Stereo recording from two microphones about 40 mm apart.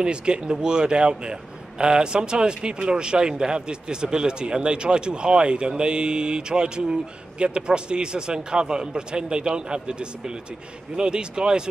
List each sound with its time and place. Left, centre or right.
0.0 s a man's voice: right